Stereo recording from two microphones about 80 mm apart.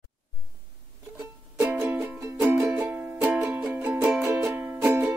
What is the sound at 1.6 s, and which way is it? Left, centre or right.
Music, right.